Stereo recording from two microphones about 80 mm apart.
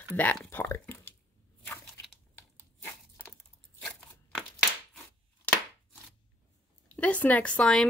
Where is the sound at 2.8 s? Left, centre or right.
Left.